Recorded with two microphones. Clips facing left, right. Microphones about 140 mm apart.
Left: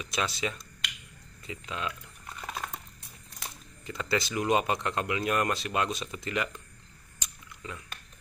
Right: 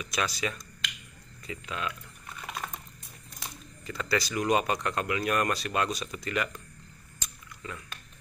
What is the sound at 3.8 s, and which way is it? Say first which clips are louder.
Speech: even; 20° left (ahead or behind).